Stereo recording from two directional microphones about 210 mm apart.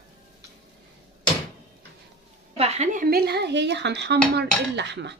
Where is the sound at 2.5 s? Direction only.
30° right (ahead or behind); by 5.1 s 55° right (ahead or behind).